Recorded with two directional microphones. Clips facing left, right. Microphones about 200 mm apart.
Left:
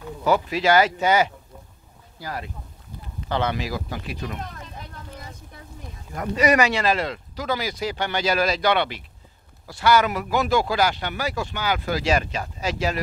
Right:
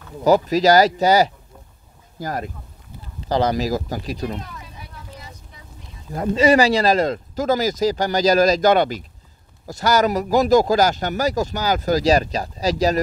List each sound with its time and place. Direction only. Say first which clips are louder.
0.2 s speech: right 6 dB; 40° right (ahead or behind)
5.1 s vehicle: left 1 dB; 55° left (ahead or behind)
6.1 s speech: right 5 dB; 25° right (ahead or behind)